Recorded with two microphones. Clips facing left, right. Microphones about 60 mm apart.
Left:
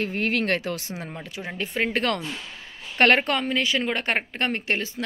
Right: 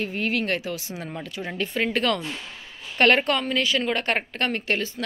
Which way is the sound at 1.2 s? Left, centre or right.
Centre.